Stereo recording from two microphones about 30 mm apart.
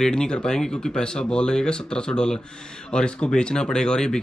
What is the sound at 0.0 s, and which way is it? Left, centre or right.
Speech, left.